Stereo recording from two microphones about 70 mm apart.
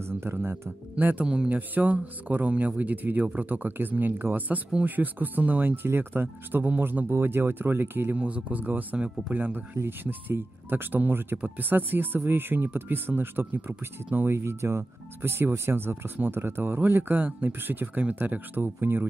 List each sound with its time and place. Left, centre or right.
0.0 s speech: right
0.9 s speech: right
8.2 s speech: centre